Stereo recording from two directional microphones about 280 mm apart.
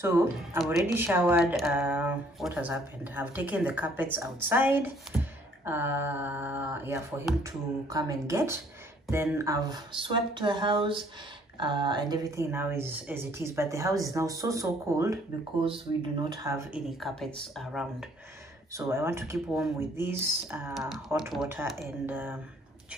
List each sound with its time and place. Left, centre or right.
0.0 s speech: centre
16.3 s speech: centre